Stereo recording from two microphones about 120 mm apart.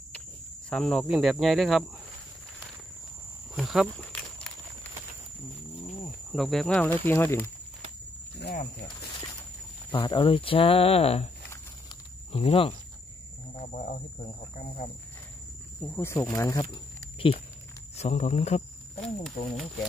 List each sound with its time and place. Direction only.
0.7 s speech: 5° left (ahead or behind)
1.0 s speech: 5° right (ahead or behind)
3.5 s speech: centre (ahead or behind)
3.8 s walk: 10° left (ahead or behind)
6.3 s speech: centre (ahead or behind); by 7.4 s 20° left (ahead or behind)
9.9 s speech: 45° left (ahead or behind)
12.3 s speech: 55° left (ahead or behind)
13.6 s a sound: 75° left (ahead or behind)
14.5 s cricket: 90° left
15.9 s speech: 20° left (ahead or behind)
17.9 s speech: 70° left (ahead or behind)
18.9 s speech: 5° left (ahead or behind)